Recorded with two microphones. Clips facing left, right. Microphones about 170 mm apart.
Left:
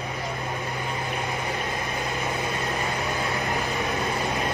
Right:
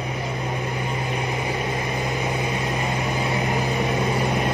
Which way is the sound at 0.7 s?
20° right (ahead or behind).